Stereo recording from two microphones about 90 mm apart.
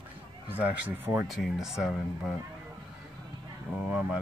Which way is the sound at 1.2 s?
Centre (ahead or behind).